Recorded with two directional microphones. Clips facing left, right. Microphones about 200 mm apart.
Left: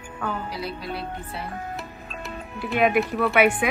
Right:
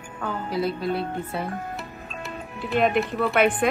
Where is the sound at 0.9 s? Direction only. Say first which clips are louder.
Right 5 dB; 50° right (ahead or behind).